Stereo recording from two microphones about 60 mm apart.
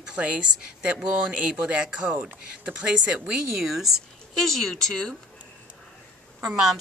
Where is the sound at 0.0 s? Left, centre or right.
Centre.